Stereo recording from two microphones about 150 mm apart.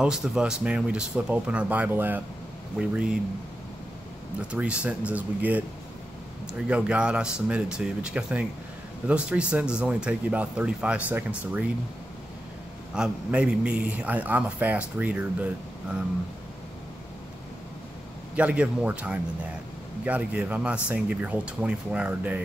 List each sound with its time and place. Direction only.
0.0 s a man's voice: 5° right (ahead or behind)
4.4 s a man's voice: 10° right (ahead or behind)
6.7 s a man's voice: 5° right (ahead or behind)
12.9 s a man's voice: 5° right (ahead or behind)
18.3 s a man's voice: 10° right (ahead or behind)